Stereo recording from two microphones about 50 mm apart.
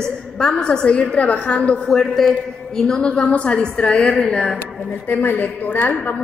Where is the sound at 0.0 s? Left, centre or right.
Centre.